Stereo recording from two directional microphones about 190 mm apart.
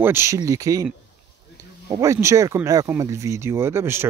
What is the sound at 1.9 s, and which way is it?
Speech, 15° right (ahead or behind).